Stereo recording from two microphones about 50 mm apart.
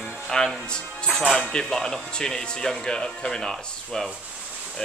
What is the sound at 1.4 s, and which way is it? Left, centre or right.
A woman's voice, centre.